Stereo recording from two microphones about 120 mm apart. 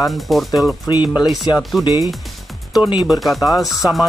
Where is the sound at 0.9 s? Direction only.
40° left (ahead or behind).